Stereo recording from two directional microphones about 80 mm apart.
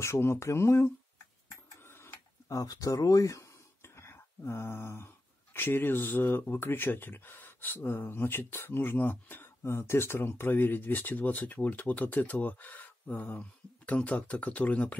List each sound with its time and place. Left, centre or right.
0.0 s speech: left